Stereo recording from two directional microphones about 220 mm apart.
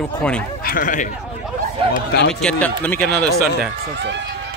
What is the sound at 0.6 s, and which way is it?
Speech, 40° left (ahead or behind).